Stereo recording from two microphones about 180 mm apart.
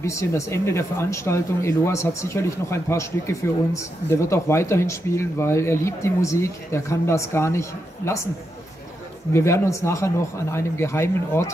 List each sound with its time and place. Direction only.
0.0 s speech: 15° left (ahead or behind)
9.3 s speech: 15° left (ahead or behind)